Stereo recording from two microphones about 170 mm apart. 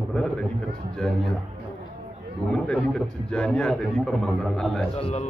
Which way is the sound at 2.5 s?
5° left (ahead or behind).